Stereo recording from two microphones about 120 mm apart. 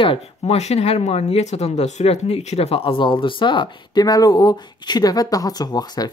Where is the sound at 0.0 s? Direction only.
55° left (ahead or behind).